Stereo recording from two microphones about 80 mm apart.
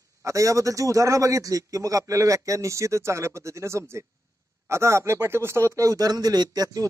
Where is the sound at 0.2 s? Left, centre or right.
Right.